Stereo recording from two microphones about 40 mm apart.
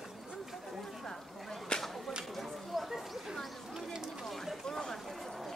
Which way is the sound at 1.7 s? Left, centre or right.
Left.